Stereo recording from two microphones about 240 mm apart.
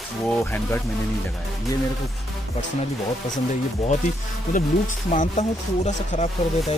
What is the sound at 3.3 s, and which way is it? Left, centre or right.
Speech, left.